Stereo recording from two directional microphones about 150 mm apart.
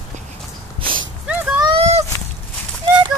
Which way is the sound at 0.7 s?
35° right (ahead or behind).